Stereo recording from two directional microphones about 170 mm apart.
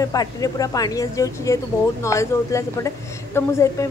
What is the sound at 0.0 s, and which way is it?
A woman's voice, 20° left (ahead or behind).